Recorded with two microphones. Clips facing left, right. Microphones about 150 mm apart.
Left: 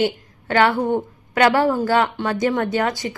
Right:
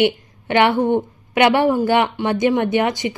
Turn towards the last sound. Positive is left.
turn(degrees=-20)  # may be behind; listen again after turning